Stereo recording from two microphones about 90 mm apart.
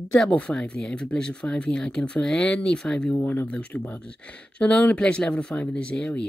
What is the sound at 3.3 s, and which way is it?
Speech, 20° left (ahead or behind).